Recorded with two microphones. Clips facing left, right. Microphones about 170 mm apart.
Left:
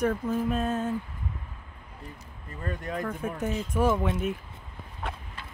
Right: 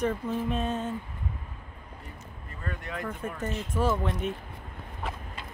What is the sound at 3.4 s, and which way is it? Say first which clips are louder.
Speech: left 3 dB; 10° left (ahead or behind).